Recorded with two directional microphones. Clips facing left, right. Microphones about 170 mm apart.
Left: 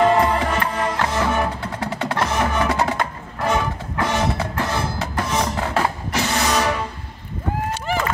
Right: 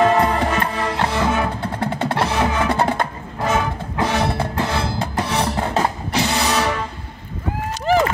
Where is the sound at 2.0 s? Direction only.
30° right (ahead or behind).